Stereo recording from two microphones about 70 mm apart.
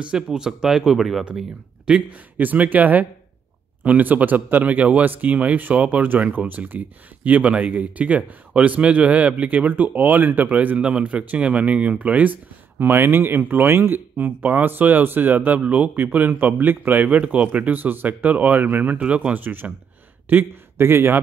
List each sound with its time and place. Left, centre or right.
0.0 s speech: centre
1.9 s a man's voice: centre; by 21.2 s right